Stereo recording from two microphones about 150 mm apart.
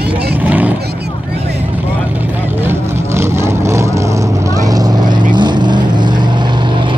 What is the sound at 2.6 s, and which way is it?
Vehicle, 15° right (ahead or behind).